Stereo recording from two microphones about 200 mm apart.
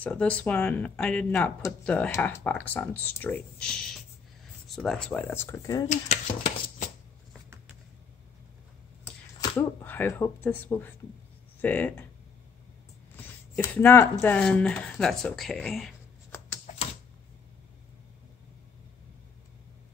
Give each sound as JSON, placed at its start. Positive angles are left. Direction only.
{"t": 0.0, "sound": "speech", "side_deg": 5}
{"t": 5.9, "sound": "speech", "side_deg": 35}
{"t": 9.4, "sound": "speech", "side_deg": 10}
{"t": 13.1, "sound": "a sound", "side_deg": 10}
{"t": 14.2, "sound": "speech", "side_deg": 5}
{"t": 16.6, "sound": "typewriter", "side_deg": 30}